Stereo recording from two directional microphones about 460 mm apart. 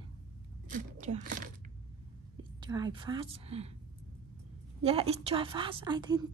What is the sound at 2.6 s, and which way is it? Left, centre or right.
A woman's voice, centre.